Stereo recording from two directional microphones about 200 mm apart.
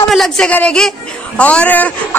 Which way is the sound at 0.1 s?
5° left (ahead or behind).